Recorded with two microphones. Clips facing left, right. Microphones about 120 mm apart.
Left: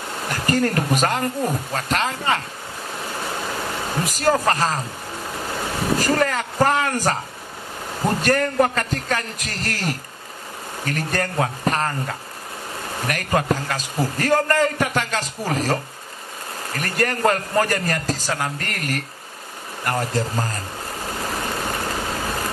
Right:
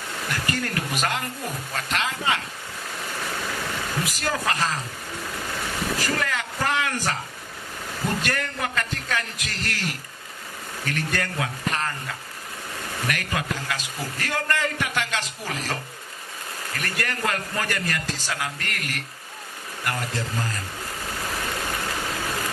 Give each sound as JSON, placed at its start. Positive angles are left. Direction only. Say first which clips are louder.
{"t": 0.2, "sound": "a man's voice", "louder": "left 8 dB", "side_deg": 35}
{"t": 3.3, "sound": "vehicle", "louder": "left 3 dB", "side_deg": 30}
{"t": 8.0, "sound": "a man's voice", "louder": "left 8 dB", "side_deg": 40}